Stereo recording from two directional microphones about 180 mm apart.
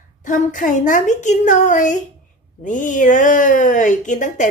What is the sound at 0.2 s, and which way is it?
Speech, 45° left (ahead or behind).